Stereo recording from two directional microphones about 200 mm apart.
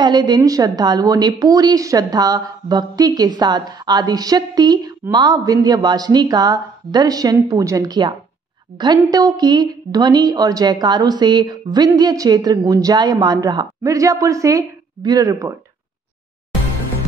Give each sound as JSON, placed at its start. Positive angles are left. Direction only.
{"t": 0.0, "sound": "a woman's voice", "side_deg": -20}